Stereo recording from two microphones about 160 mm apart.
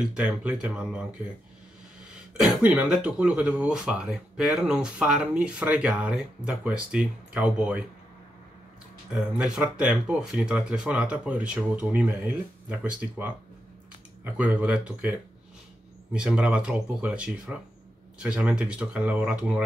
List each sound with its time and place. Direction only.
0.1 s speech: 10° right (ahead or behind)
2.4 s speech: 5° right (ahead or behind)
9.1 s speech: 5° right (ahead or behind)